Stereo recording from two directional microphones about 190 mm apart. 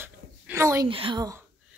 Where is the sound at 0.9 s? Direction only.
25° right (ahead or behind).